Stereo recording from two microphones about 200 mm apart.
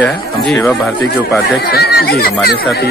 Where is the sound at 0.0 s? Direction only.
5° left (ahead or behind).